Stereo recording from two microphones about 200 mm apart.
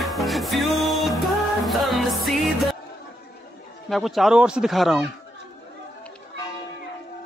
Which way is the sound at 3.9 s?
Centre (ahead or behind).